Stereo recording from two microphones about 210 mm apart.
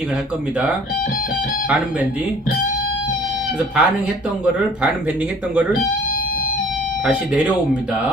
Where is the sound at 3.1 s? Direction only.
45° left (ahead or behind).